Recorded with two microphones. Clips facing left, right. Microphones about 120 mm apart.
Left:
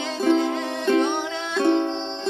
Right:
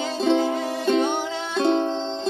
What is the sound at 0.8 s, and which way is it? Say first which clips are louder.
Music: left 1 dB; 35° right (ahead or behind).